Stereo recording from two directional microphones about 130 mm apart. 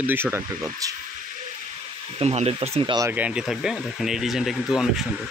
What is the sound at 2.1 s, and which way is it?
Speech, 55° right (ahead or behind).